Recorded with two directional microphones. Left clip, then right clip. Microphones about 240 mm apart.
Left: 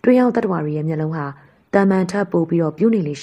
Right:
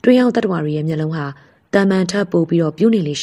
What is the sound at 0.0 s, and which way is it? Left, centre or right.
A woman's voice, right.